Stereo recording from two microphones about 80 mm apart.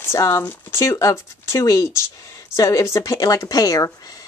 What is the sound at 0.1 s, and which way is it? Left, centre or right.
Speech, left.